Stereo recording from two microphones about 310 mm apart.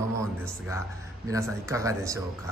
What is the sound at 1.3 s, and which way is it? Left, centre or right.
Mantra, centre.